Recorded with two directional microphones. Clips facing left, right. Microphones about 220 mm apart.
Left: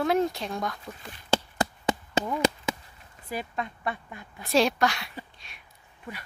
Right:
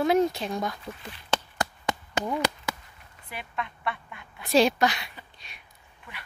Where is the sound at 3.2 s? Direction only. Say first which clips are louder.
Left 4 dB; 35° left (ahead or behind).